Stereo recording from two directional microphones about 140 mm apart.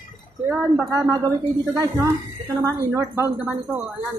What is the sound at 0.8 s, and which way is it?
A woman's voice, 25° right (ahead or behind).